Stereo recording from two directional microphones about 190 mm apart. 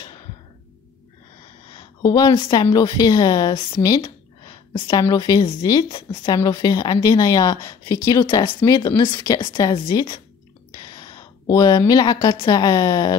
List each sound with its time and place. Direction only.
1.8 s a woman's voice: 20° left (ahead or behind)